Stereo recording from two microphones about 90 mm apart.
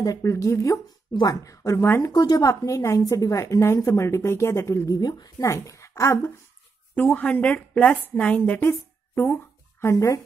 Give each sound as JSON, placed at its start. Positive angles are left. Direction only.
{"t": 0.0, "sound": "a woman's voice", "side_deg": 40}
{"t": 1.6, "sound": "a woman's voice", "side_deg": 25}
{"t": 2.1, "sound": "a woman's voice", "side_deg": 45}
{"t": 7.0, "sound": "a woman's voice", "side_deg": 15}